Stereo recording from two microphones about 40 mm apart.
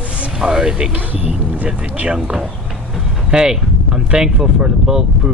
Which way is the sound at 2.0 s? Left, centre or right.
Right.